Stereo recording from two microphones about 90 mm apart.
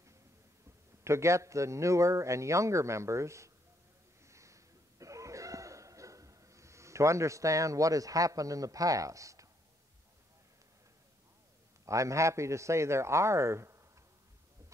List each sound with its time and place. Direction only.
1.0 s a man's voice: 30° right (ahead or behind)
4.3 s a sound: 35° right (ahead or behind)
11.8 s a man's voice: 35° right (ahead or behind)